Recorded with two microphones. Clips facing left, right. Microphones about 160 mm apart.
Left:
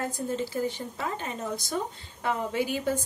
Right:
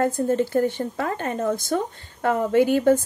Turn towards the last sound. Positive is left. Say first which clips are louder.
# right 11 dB
turn(degrees=-60)  # may be behind; listen again after turning